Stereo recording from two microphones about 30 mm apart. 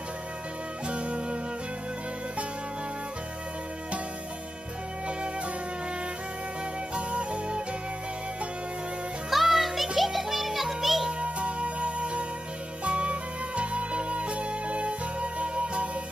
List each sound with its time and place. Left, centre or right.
0.8 s music: right
7.0 s music: right
9.3 s music: centre
11.2 s music: right